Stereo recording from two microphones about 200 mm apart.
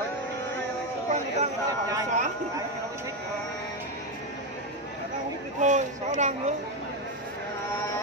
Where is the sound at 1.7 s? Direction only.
15° right (ahead or behind).